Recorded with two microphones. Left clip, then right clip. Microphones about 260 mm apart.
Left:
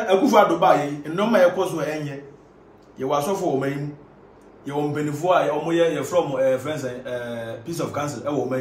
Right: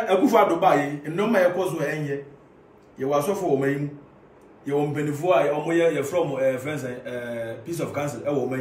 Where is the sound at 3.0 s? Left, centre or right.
Centre.